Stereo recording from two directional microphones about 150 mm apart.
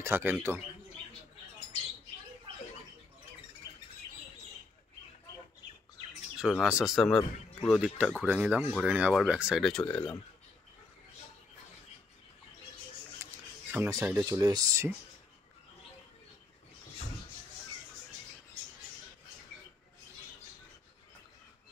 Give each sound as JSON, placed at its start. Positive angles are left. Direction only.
{"t": 0.0, "sound": "speech", "side_deg": -15}
{"t": 6.3, "sound": "speech", "side_deg": 0}
{"t": 13.2, "sound": "a sound", "side_deg": -15}
{"t": 14.0, "sound": "speech", "side_deg": -20}